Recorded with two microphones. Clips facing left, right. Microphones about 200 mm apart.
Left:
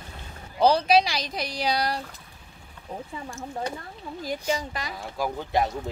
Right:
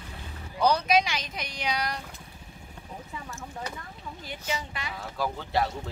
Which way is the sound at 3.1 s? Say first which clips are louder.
Left 3 dB; 35° left (ahead or behind).